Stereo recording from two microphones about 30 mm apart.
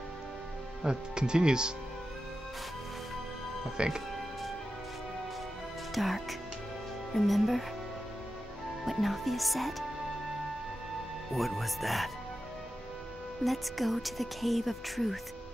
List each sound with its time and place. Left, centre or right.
0.8 s speech: right
3.7 s speech: right
5.9 s speech: centre
8.8 s speech: centre
11.3 s speech: centre
13.4 s speech: centre